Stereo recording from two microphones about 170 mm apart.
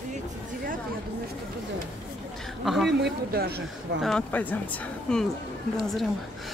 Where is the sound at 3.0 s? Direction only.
65° right (ahead or behind).